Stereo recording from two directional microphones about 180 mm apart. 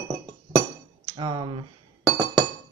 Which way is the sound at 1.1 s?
25° right (ahead or behind).